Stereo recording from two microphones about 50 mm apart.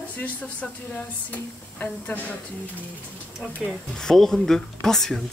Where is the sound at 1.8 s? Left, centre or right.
Left.